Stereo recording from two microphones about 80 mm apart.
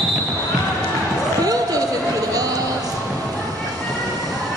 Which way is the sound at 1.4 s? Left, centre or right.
Right.